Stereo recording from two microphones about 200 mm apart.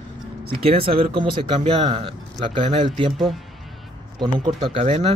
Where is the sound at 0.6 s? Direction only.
30° right (ahead or behind).